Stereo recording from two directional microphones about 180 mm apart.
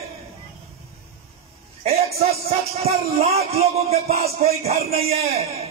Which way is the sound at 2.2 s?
35° right (ahead or behind).